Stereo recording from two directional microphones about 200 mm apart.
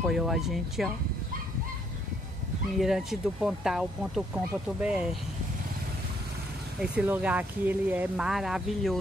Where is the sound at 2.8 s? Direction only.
Centre (ahead or behind).